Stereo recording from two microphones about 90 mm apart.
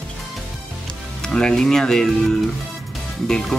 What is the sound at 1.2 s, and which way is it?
Speech, 10° left (ahead or behind).